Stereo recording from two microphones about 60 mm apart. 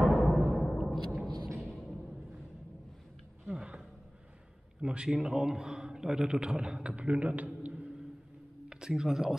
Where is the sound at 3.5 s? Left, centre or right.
Centre.